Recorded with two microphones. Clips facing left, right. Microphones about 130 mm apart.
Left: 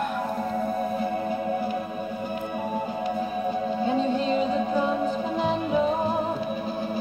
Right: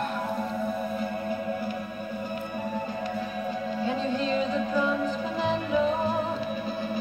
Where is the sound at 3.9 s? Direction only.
35° left (ahead or behind).